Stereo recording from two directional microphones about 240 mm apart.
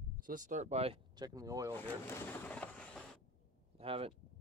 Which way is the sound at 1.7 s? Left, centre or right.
Centre.